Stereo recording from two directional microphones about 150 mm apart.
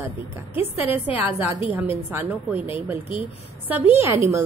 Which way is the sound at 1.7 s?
15° right (ahead or behind).